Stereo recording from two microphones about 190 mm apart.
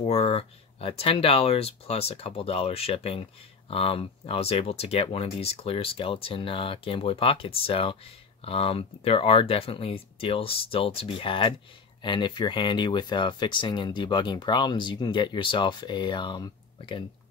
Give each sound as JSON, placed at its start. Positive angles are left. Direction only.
{"t": 0.0, "sound": "speech", "side_deg": 30}